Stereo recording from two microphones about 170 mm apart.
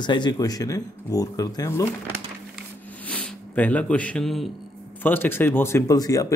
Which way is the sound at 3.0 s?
5° left (ahead or behind).